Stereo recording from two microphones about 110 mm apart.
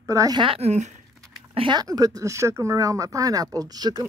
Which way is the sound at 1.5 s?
45° right (ahead or behind).